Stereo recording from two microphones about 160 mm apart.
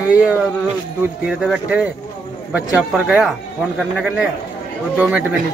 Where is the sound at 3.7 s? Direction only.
5° left (ahead or behind).